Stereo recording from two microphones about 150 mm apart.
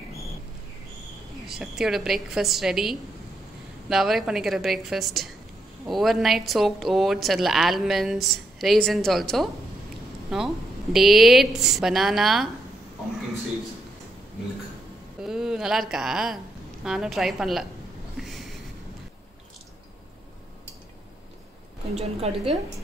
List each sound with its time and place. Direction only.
1.5 s a woman's voice: centre (ahead or behind)
15.2 s a sound: 5° right (ahead or behind)
16.8 s a woman's voice: 5° right (ahead or behind)
21.9 s a woman's voice: 45° right (ahead or behind)